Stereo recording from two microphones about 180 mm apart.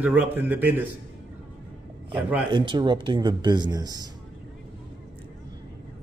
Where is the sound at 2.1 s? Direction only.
10° right (ahead or behind).